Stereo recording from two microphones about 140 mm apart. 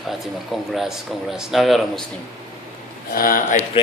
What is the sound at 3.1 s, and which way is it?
Speech, 80° left.